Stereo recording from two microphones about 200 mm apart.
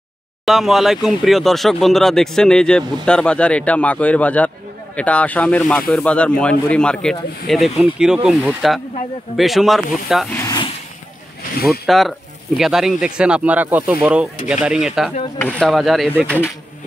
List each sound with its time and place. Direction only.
0.5 s speech: centre (ahead or behind)
10.3 s a sound: 15° left (ahead or behind)
11.8 s speech: centre (ahead or behind)